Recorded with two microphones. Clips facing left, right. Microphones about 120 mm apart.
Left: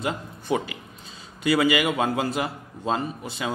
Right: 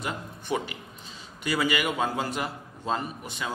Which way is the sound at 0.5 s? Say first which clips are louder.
Left 4 dB; 20° left (ahead or behind).